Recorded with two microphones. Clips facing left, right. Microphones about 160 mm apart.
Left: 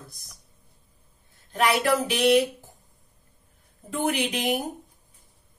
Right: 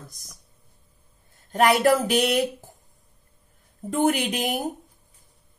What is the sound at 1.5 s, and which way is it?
Speech, 45° right (ahead or behind).